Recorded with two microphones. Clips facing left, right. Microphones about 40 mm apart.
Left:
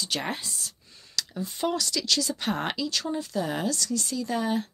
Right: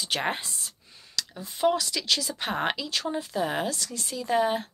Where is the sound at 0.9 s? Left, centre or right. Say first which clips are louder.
Left 3 dB; centre.